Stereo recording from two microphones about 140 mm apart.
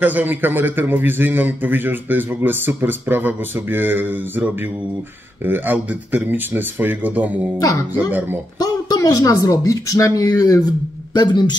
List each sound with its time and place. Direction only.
0.0 s a man's voice: 10° right (ahead or behind)
8.5 s a woman's voice: 25° left (ahead or behind)